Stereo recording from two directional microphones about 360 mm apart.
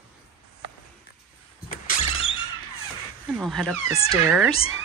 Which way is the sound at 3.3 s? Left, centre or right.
Centre.